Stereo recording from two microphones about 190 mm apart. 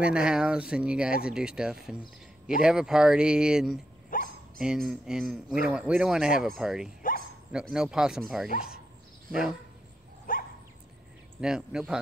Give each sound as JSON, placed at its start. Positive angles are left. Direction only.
{"t": 0.0, "sound": "speech", "side_deg": -5}
{"t": 4.1, "sound": "dog", "side_deg": 45}
{"t": 4.6, "sound": "speech", "side_deg": -5}
{"t": 7.0, "sound": "dog", "side_deg": 45}
{"t": 7.5, "sound": "speech", "side_deg": -5}
{"t": 10.3, "sound": "dog", "side_deg": 50}
{"t": 11.4, "sound": "speech", "side_deg": -5}